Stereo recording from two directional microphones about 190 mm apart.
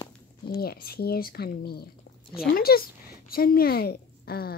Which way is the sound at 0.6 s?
55° left (ahead or behind).